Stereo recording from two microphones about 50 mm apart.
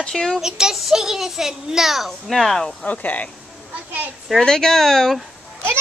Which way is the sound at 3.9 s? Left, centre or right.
Right.